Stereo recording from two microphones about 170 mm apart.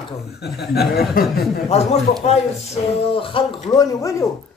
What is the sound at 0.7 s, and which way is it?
Speech, 70° left (ahead or behind).